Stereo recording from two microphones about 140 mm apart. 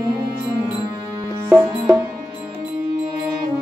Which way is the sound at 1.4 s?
20° right (ahead or behind).